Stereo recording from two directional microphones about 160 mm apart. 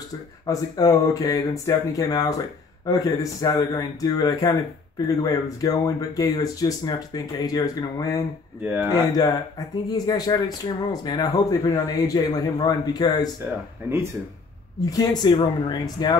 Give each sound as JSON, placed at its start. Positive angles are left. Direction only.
{"t": 0.5, "sound": "speech", "side_deg": 25}
{"t": 13.8, "sound": "speech", "side_deg": -15}
{"t": 14.9, "sound": "speech", "side_deg": 25}